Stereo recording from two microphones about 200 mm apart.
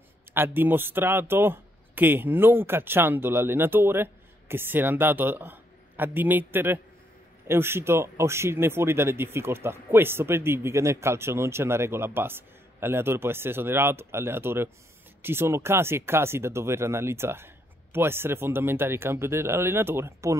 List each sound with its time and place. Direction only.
0.3 s speech: 10° right (ahead or behind)